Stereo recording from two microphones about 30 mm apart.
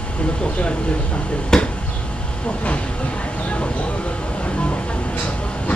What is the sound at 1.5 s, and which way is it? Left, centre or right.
Speech, left.